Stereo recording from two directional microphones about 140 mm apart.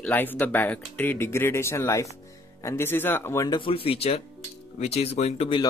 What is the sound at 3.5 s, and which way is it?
Speech, 40° left (ahead or behind).